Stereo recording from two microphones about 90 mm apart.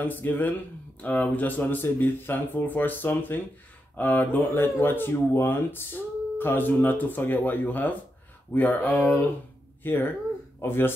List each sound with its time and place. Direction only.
0.0 s speech: 20° left (ahead or behind)